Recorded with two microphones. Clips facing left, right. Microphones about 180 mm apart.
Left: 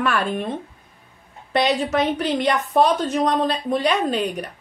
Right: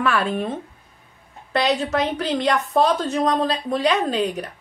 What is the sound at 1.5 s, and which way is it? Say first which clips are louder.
A woman's voice: left 1 dB; centre (ahead or behind).